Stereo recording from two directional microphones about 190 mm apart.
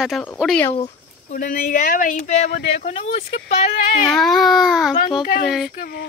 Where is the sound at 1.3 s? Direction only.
50° left (ahead or behind).